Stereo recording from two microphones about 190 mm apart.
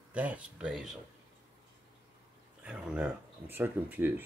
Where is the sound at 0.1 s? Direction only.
5° right (ahead or behind).